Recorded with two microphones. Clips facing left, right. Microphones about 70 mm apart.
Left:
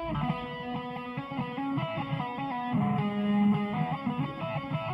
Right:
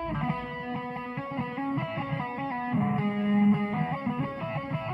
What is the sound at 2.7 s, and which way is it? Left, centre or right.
Music, right.